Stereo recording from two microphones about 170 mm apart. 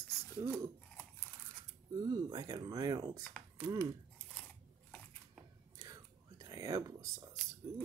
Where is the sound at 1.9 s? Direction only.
25° right (ahead or behind).